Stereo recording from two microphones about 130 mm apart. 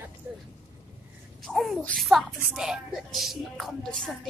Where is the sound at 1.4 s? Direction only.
Centre (ahead or behind).